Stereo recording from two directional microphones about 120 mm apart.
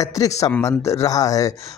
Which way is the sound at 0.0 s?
30° left (ahead or behind).